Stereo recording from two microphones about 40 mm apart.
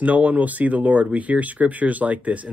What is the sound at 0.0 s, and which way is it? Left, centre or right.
Speech, right.